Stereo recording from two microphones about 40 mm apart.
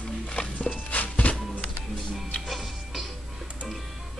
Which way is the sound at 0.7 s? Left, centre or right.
Left.